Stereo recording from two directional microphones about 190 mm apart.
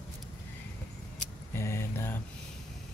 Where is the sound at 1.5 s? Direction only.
15° left (ahead or behind).